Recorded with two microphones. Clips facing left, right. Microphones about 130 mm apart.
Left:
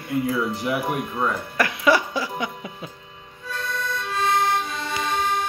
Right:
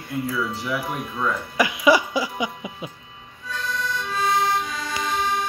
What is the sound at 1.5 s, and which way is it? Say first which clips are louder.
Music: right 2 dB; 10° right (ahead or behind).